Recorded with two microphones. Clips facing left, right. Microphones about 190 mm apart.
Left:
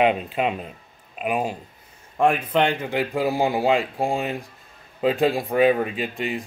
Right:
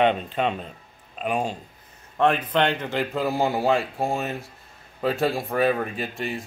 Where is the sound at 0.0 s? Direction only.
5° left (ahead or behind).